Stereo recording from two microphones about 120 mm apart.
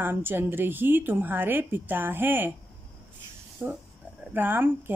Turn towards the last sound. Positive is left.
turn(degrees=-15)  # may be behind; listen again after turning